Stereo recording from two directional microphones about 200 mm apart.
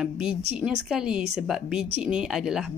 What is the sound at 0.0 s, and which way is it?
Speech, 5° right (ahead or behind).